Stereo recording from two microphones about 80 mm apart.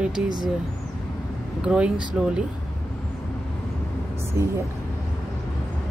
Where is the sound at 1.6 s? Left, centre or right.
Centre.